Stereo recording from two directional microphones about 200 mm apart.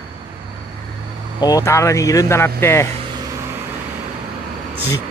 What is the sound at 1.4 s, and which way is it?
Speech, 15° left (ahead or behind).